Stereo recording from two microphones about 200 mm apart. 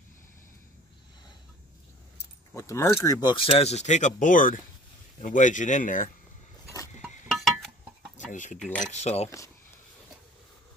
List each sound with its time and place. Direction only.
2.5 s speech: 15° left (ahead or behind); by 6.0 s 40° left (ahead or behind)
7.3 s a sound: centre (ahead or behind)
8.3 s speech: 40° left (ahead or behind)
8.5 s speech: 5° left (ahead or behind)
8.8 s speech: 35° left (ahead or behind)